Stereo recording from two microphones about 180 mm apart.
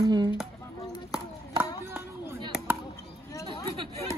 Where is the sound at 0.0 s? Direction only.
20° right (ahead or behind).